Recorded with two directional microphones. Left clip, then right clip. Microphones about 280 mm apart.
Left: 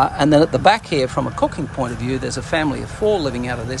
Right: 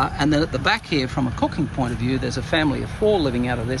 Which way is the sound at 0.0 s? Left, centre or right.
Centre.